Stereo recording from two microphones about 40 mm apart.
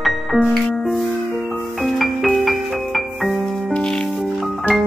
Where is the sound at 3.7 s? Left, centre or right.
Centre.